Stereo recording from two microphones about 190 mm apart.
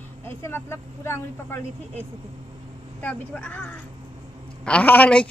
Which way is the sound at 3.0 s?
10° left (ahead or behind).